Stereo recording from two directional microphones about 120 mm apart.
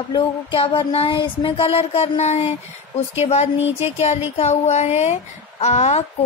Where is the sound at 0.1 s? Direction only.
45° left (ahead or behind); by 2.5 s 65° left (ahead or behind).